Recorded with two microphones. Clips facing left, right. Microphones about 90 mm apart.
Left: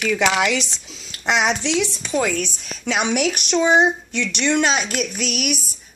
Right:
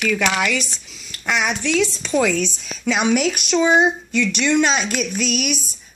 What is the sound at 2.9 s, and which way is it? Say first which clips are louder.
Speech: right 3 dB; 15° left (ahead or behind).